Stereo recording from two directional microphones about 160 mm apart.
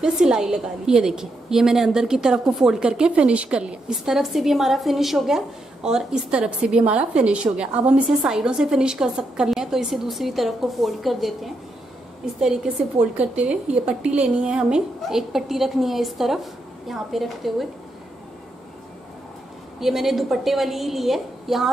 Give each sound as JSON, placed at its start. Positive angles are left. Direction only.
{"t": 0.0, "sound": "a woman's voice", "side_deg": -5}
{"t": 13.0, "sound": "a woman's voice", "side_deg": -45}
{"t": 13.3, "sound": "a woman's voice", "side_deg": -5}
{"t": 19.8, "sound": "a woman's voice", "side_deg": 0}